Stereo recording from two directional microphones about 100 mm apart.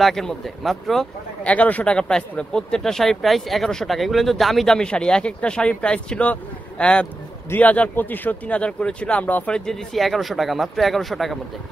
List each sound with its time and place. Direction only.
0.0 s speech: 5° left (ahead or behind)
1.4 s speech: 15° left (ahead or behind)
9.7 s speech: centre (ahead or behind)